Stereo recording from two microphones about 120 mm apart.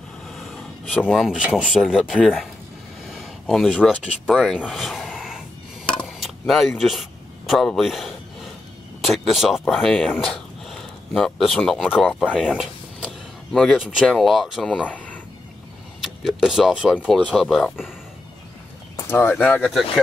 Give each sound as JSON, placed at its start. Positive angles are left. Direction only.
{"t": 0.3, "sound": "speech", "side_deg": 0}
{"t": 5.9, "sound": "a sound", "side_deg": 10}
{"t": 9.0, "sound": "speech", "side_deg": 0}
{"t": 13.0, "sound": "a sound", "side_deg": 5}
{"t": 14.0, "sound": "speech", "side_deg": 0}
{"t": 14.7, "sound": "speech", "side_deg": 10}
{"t": 16.0, "sound": "speech", "side_deg": 0}
{"t": 17.1, "sound": "speech", "side_deg": 5}
{"t": 19.0, "sound": "speech", "side_deg": 20}